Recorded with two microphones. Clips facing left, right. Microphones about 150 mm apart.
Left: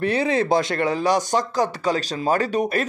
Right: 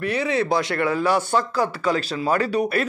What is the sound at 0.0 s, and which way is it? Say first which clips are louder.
Speech: left 2 dB; 25° left (ahead or behind).